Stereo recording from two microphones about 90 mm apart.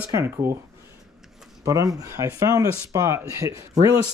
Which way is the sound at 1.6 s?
40° right (ahead or behind).